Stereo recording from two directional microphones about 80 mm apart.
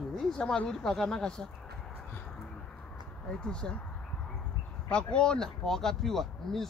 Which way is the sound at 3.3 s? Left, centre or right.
Centre.